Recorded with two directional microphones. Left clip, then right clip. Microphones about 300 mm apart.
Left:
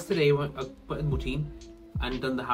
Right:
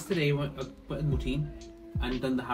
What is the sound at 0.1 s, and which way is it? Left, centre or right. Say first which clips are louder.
A man's voice: left 5 dB; centre.